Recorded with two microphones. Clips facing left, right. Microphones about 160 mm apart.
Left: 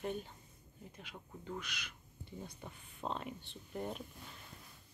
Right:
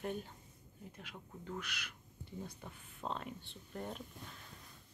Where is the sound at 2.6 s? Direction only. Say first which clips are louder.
Left 1 dB; 5° left (ahead or behind).